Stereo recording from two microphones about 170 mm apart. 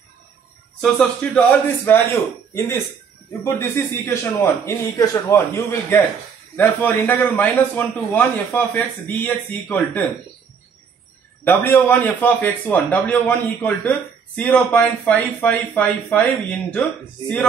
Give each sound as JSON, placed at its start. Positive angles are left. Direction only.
{"t": 0.7, "sound": "a man's voice", "side_deg": 5}
{"t": 11.4, "sound": "a man's voice", "side_deg": 10}